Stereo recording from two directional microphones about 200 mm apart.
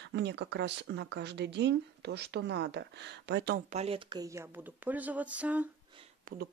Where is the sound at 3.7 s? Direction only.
30° right (ahead or behind); by 5.6 s 5° right (ahead or behind).